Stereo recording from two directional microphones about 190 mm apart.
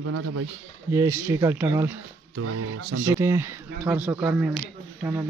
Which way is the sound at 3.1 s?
15° right (ahead or behind).